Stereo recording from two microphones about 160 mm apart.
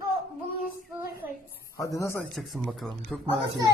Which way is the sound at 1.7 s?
20° left (ahead or behind).